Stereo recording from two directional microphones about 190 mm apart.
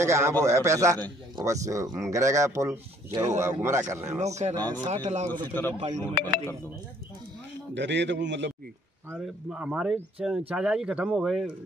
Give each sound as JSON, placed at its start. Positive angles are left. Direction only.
{"t": 0.0, "sound": "speech", "side_deg": -15}
{"t": 4.2, "sound": "speech", "side_deg": -35}
{"t": 4.6, "sound": "speech", "side_deg": 10}
{"t": 4.8, "sound": "speech", "side_deg": -35}
{"t": 5.5, "sound": "speech", "side_deg": 10}
{"t": 7.7, "sound": "a man's voice", "side_deg": -70}
{"t": 9.1, "sound": "speech", "side_deg": -5}